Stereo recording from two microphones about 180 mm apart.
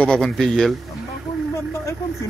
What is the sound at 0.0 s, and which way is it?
Speech, 5° left (ahead or behind).